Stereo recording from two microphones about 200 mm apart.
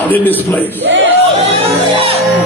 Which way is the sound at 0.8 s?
65° right (ahead or behind).